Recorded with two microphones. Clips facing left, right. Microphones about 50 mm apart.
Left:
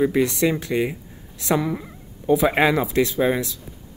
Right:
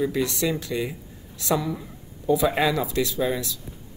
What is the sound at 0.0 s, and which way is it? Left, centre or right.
Speech, left.